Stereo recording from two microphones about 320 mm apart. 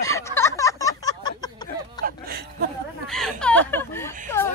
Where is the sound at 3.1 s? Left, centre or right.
Centre.